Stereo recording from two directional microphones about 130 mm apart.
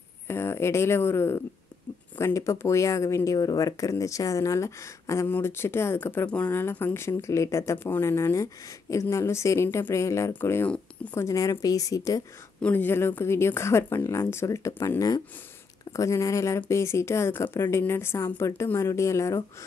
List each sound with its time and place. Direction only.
0.3 s speech: 20° left (ahead or behind)
12.6 s speech: 15° left (ahead or behind)